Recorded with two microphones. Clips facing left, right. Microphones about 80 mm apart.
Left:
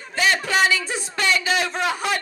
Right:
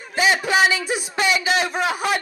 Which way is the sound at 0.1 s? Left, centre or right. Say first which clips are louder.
Right 2 dB; centre.